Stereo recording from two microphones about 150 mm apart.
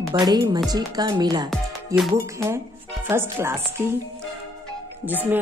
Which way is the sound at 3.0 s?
15° right (ahead or behind).